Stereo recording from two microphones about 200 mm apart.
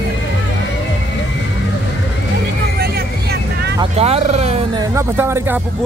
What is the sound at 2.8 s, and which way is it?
Vehicle, 50° right (ahead or behind).